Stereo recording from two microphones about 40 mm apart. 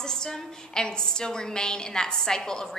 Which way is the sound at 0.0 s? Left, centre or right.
Centre.